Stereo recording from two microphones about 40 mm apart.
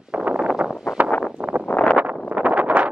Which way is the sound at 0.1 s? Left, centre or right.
Right.